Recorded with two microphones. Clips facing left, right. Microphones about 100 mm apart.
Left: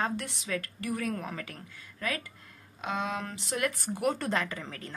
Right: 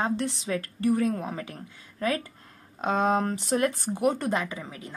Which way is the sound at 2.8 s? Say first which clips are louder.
Right 9 dB; 40° right (ahead or behind).